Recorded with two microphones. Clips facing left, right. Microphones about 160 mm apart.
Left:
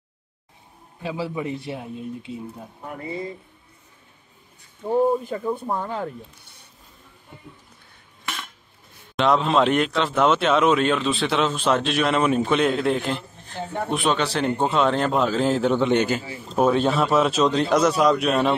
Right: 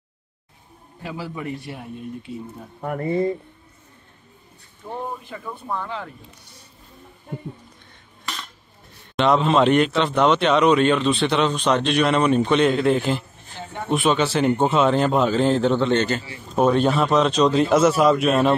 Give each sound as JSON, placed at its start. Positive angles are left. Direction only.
{"t": 1.0, "sound": "a man's voice", "side_deg": 25}
{"t": 2.8, "sound": "speech", "side_deg": -55}
{"t": 5.4, "sound": "speech", "side_deg": 40}
{"t": 9.1, "sound": "speech", "side_deg": 0}